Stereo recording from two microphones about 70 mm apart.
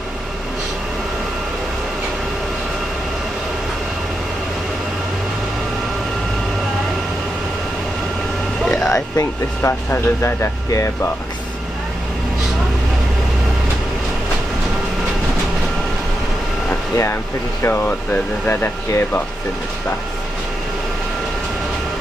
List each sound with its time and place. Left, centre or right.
8.6 s vehicle: centre
9.1 s speech: left
16.9 s speech: left